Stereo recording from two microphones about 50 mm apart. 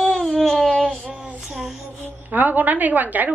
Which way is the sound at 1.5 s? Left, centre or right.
Centre.